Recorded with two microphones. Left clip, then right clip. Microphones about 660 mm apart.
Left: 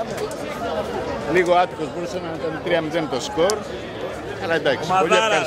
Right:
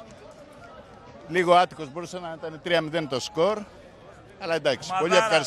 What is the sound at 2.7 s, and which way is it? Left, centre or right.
A man's voice, right.